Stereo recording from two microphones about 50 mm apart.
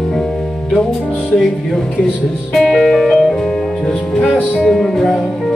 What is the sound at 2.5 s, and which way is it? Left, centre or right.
Music, centre.